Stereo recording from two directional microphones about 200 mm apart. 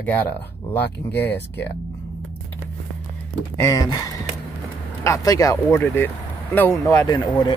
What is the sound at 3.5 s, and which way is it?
Speech, 15° left (ahead or behind).